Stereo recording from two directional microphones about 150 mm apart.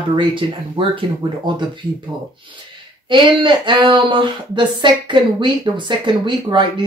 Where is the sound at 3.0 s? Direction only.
30° right (ahead or behind).